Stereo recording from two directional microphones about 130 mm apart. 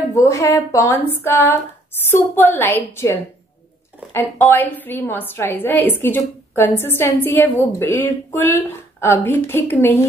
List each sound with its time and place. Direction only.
0.1 s a woman's voice: 25° left (ahead or behind)